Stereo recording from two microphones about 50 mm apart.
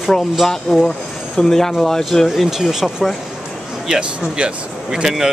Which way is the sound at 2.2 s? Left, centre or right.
Centre.